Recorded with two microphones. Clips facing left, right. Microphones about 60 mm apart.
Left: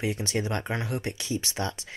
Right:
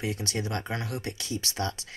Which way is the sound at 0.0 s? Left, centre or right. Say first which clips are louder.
Left 3 dB; left.